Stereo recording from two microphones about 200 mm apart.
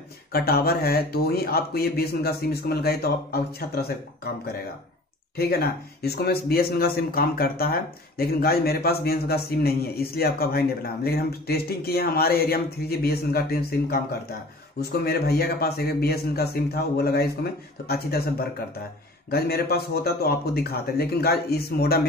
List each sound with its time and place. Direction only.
0.3 s speech: 50° left (ahead or behind)
5.4 s speech: 50° left (ahead or behind)
19.3 s speech: 50° left (ahead or behind)